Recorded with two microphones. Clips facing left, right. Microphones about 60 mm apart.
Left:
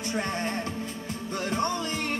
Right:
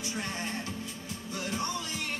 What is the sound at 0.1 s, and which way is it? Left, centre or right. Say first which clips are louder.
Speech: left 7 dB; left.